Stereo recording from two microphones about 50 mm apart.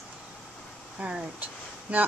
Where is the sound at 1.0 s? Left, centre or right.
Right.